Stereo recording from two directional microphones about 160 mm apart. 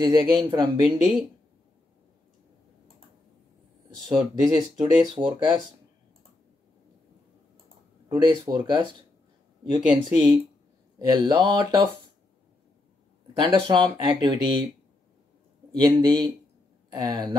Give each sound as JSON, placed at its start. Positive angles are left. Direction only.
{"t": 0.0, "sound": "speech", "side_deg": -25}
{"t": 3.9, "sound": "speech", "side_deg": -25}
{"t": 8.1, "sound": "speech", "side_deg": -25}
{"t": 13.4, "sound": "speech", "side_deg": -30}
{"t": 15.8, "sound": "speech", "side_deg": -30}